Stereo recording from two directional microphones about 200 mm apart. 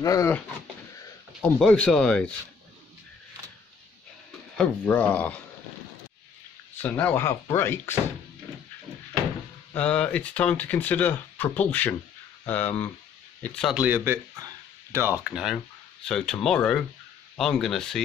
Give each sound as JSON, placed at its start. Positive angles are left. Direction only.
{"t": 0.0, "sound": "speech", "side_deg": 15}
{"t": 1.4, "sound": "speech", "side_deg": 5}
{"t": 4.6, "sound": "speech", "side_deg": 5}
{"t": 6.7, "sound": "speech", "side_deg": 10}
{"t": 9.8, "sound": "speech", "side_deg": 5}